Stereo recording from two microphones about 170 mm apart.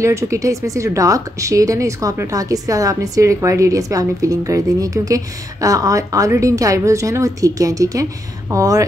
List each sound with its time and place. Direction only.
0.0 s speech: 15° right (ahead or behind)